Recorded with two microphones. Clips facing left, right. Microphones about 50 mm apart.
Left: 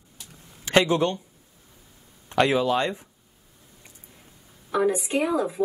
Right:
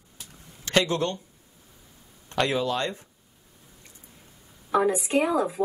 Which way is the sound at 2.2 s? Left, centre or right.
Centre.